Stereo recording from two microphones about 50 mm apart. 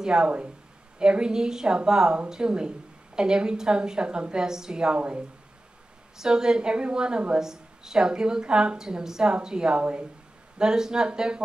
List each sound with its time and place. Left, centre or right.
0.0 s a woman's voice: centre